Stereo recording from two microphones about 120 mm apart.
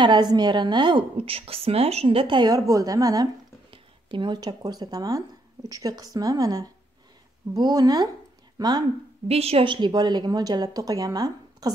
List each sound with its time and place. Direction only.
0.0 s a woman's voice: 40° right (ahead or behind)
3.7 s a woman's voice: 45° right (ahead or behind)
9.3 s a woman's voice: 55° right (ahead or behind); by 11.7 s 30° right (ahead or behind)